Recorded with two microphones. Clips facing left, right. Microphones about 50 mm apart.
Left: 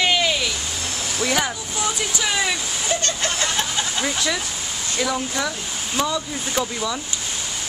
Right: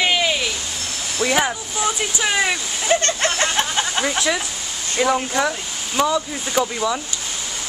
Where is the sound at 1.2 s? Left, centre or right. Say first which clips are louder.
Right 4 dB; centre.